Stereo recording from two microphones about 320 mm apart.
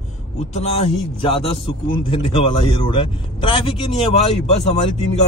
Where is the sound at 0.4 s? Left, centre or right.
Left.